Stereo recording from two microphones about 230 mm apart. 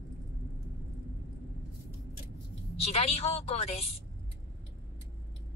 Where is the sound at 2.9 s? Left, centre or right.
Left.